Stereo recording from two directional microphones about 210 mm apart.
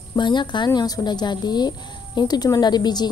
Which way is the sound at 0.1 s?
20° left (ahead or behind).